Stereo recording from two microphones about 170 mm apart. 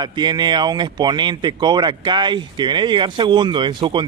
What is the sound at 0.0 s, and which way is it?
Speech, 25° right (ahead or behind).